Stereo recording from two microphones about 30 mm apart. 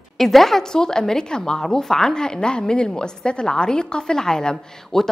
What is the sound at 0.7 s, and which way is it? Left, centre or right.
A woman's voice, left.